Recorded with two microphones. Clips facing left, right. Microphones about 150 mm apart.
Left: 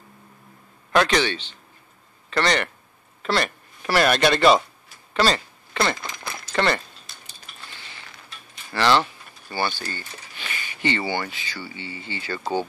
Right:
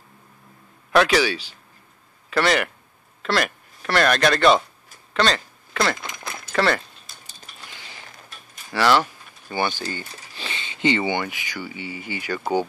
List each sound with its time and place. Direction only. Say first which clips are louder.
0.9 s speech: right 2 dB; 5° right (ahead or behind)
5.1 s a sound: even; 5° left (ahead or behind)
6.5 s speech: right 1 dB; centre (ahead or behind)
7.6 s a sound: right 1 dB; 15° right (ahead or behind)
8.1 s creak: even; 40° right (ahead or behind)
8.7 s speech: right 1 dB; 10° right (ahead or behind)
10.3 s speech: right 2 dB; 25° right (ahead or behind)